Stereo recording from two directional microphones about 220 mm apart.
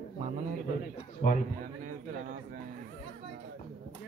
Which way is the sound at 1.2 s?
40° left (ahead or behind).